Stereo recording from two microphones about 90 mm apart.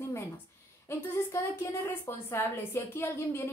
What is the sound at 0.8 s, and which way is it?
A woman's voice, 25° left (ahead or behind).